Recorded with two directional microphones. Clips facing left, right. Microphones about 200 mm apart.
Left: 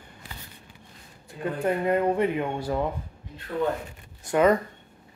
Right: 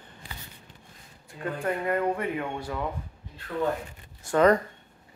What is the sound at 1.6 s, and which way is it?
Speech, 20° left (ahead or behind).